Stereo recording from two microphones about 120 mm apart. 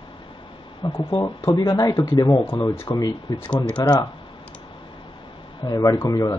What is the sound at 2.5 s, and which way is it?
Speech, 20° left (ahead or behind).